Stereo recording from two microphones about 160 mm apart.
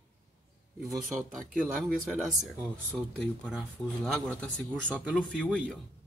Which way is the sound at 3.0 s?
5° left (ahead or behind).